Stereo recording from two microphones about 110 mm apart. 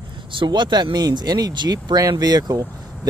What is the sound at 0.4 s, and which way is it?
Speech, 45° right (ahead or behind).